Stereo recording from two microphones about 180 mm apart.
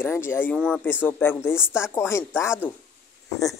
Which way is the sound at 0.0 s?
10° left (ahead or behind).